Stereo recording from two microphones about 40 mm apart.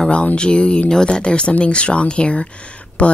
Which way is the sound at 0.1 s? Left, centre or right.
Left.